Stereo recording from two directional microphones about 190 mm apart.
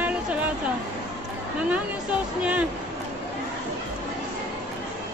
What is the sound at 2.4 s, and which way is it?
Speech, 5° right (ahead or behind).